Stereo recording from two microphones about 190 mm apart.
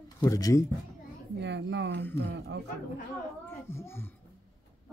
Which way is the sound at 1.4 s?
70° right (ahead or behind).